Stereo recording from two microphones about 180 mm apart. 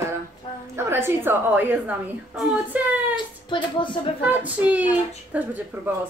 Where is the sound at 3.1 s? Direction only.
25° left (ahead or behind).